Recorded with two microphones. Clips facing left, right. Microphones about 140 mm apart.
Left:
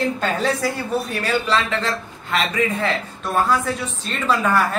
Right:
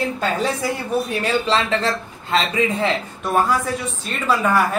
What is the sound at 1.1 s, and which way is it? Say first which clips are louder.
A man's voice: right 2 dB; 25° right (ahead or behind).